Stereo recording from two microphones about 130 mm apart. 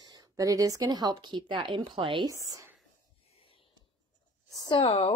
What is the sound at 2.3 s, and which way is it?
Speech, 25° right (ahead or behind).